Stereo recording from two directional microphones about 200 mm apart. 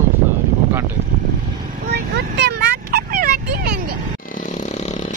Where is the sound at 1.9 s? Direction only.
55° right (ahead or behind).